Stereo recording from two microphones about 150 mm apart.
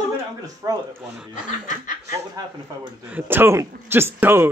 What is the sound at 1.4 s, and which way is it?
Snicker, 60° left (ahead or behind).